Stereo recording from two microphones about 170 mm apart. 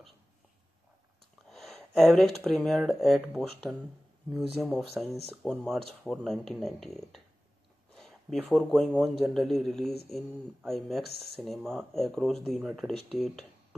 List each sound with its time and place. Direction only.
1.5 s speech: centre (ahead or behind)
7.9 s a sound: centre (ahead or behind)
8.4 s speech: centre (ahead or behind)